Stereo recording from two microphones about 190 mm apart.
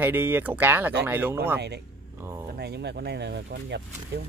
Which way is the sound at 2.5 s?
60° right (ahead or behind).